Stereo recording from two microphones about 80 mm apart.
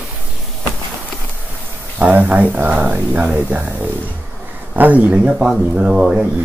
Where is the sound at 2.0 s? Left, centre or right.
Centre.